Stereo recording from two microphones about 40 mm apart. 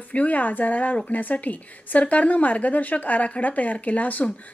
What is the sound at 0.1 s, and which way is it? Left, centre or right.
A woman's voice, left.